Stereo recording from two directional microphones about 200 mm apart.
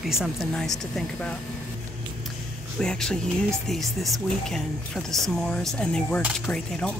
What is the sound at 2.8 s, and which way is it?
Speech, 5° left (ahead or behind).